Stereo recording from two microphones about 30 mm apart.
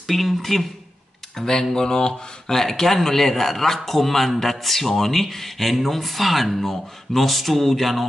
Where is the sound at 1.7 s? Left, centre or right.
Left.